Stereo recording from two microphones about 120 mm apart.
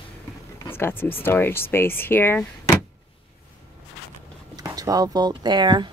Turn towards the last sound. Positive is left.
turn(degrees=-40)  # may be behind; listen again after turning